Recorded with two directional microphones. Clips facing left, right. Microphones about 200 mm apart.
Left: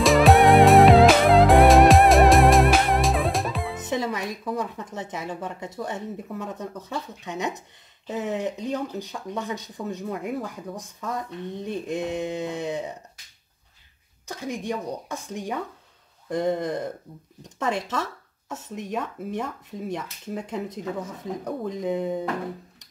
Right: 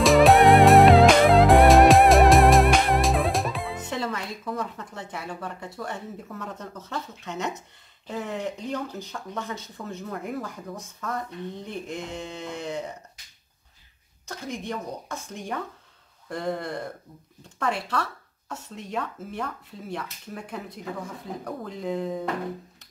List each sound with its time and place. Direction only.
0.0 s music: centre (ahead or behind)
3.9 s speech: 15° left (ahead or behind)
14.2 s speech: 15° left (ahead or behind)